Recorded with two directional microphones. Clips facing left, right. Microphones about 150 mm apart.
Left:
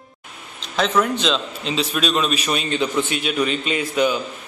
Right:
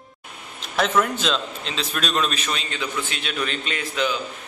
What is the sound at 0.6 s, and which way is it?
A man's voice, 5° right (ahead or behind).